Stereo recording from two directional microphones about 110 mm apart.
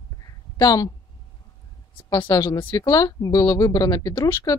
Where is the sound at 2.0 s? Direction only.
40° left (ahead or behind).